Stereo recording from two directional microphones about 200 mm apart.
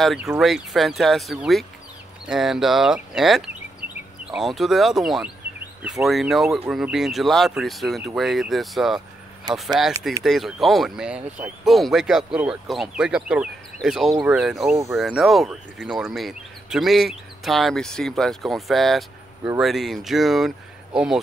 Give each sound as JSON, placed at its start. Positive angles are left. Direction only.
{"t": 0.0, "sound": "speech", "side_deg": 0}